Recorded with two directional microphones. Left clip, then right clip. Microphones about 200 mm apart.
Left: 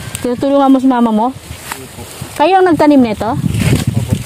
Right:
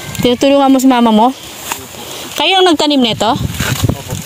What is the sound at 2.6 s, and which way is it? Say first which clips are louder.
Speech: left 1 dB; 5° left (ahead or behind).